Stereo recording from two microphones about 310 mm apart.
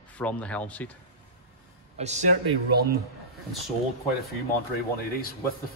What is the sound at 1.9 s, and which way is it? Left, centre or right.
Speech, right.